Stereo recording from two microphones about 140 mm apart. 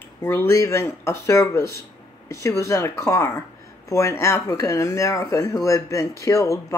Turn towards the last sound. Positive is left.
turn(degrees=25)  # may be behind; listen again after turning